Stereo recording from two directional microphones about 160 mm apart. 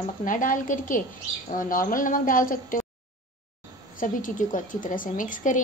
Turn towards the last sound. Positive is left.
turn(degrees=55)  # may be behind; listen again after turning